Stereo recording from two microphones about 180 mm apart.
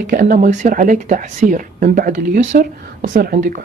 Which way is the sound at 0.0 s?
50° right (ahead or behind).